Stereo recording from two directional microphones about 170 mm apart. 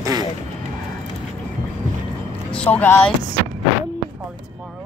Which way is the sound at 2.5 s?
10° left (ahead or behind).